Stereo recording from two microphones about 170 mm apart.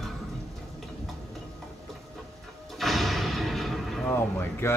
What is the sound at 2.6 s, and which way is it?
Artillery fire, centre (ahead or behind).